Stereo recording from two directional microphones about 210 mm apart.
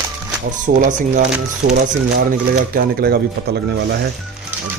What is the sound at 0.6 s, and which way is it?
Speech, 40° right (ahead or behind).